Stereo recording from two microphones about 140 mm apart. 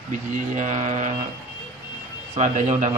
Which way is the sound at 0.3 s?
60° right (ahead or behind).